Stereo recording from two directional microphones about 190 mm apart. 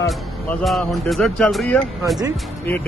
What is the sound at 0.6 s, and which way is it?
Speech, centre (ahead or behind).